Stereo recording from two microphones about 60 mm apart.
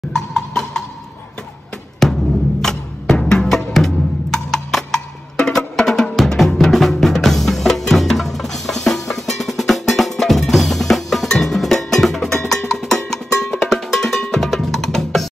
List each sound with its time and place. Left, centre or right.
0.1 s music: centre
2.0 s music: centre